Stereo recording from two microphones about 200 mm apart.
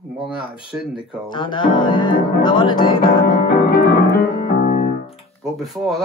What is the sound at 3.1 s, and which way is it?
Music, 45° left (ahead or behind).